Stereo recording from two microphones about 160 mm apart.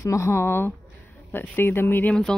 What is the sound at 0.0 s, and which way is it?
Speech, 20° left (ahead or behind).